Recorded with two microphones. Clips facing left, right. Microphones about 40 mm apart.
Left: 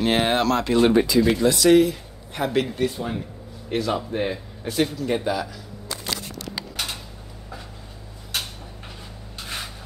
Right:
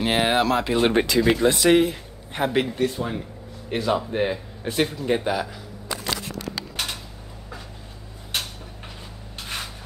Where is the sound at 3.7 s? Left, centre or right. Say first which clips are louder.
Right 1 dB; right.